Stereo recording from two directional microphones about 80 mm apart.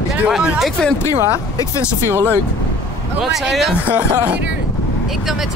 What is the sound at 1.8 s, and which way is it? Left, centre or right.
Speech, left.